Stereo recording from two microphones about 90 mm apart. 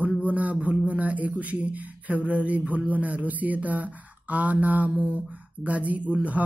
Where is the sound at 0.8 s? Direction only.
15° right (ahead or behind).